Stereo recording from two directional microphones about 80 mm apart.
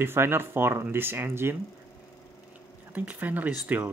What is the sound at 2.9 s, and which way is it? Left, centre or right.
Speech, centre.